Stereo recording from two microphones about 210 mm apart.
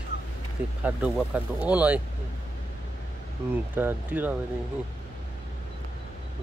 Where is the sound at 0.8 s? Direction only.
5° right (ahead or behind).